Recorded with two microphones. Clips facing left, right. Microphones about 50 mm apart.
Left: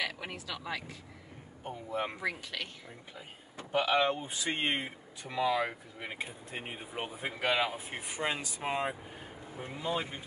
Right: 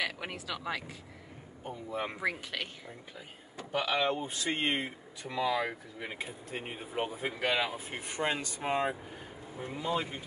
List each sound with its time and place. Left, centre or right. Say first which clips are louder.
0.0 s speech: right 1 dB; right
1.6 s speech: even; left
2.2 s speech: right 2 dB; right
3.7 s speech: left 2 dB; centre
9.9 s speech: right 2 dB; centre